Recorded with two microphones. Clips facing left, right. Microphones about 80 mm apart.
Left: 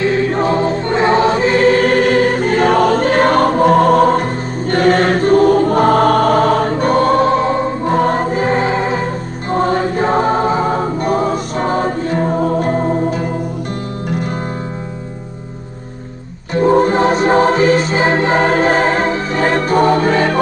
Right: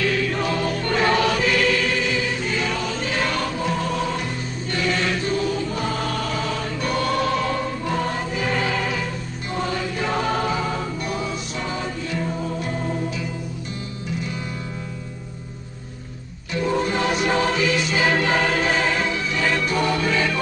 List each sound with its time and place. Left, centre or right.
0.0 s choir: left
14.0 s music: left
16.5 s music: left